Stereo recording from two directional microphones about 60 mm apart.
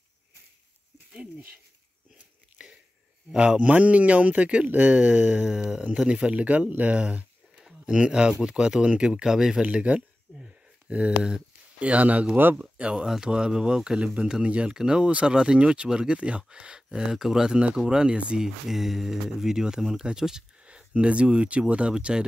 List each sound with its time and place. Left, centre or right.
2.1 s biting: centre
3.3 s speech: centre
7.5 s speech: centre
9.6 s speech: centre
11.1 s speech: centre
11.8 s speech: right
18.7 s speech: centre